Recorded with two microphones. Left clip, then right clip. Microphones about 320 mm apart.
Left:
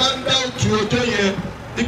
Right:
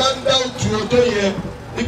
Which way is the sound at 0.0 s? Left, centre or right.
Right.